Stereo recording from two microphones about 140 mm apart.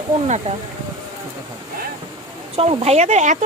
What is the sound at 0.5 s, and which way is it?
Speech, 50° right (ahead or behind).